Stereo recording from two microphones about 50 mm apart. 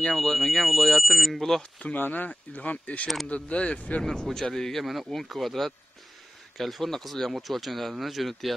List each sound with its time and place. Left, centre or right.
0.1 s speech: centre
2.0 s speech: left
4.0 s speech: centre